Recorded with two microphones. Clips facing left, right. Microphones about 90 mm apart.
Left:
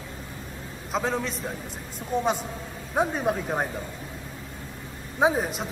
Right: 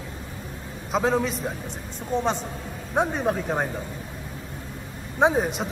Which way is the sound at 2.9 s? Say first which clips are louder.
Right 1 dB; centre (ahead or behind).